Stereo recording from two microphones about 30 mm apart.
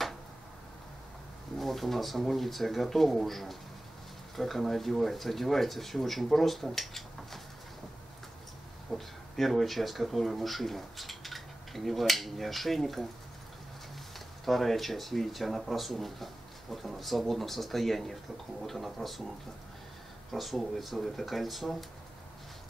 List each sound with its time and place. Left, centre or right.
1.6 s speech: centre
8.9 s speech: centre
14.1 s speech: centre
20.3 s speech: centre